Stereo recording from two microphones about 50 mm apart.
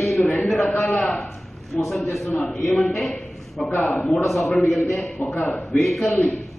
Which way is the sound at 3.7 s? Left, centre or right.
Left.